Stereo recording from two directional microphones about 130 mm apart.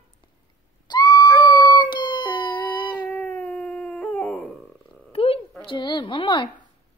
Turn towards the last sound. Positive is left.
turn(degrees=35)  # may be behind; listen again after turning